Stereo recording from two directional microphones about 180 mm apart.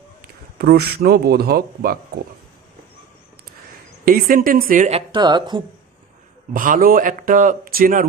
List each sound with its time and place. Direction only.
0.6 s a man's voice: 60° right (ahead or behind)
4.0 s a man's voice: 50° right (ahead or behind)
5.1 s speech: 25° right (ahead or behind)
6.5 s a man's voice: 50° right (ahead or behind)